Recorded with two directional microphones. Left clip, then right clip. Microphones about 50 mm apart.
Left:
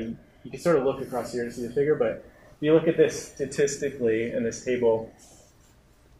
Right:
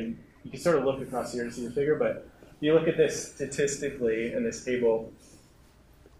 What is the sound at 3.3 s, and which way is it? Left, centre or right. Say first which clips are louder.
Speech: left 3 dB; centre.